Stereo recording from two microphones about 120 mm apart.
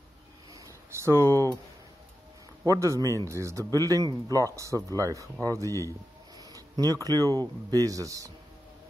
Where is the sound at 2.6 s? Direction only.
25° right (ahead or behind).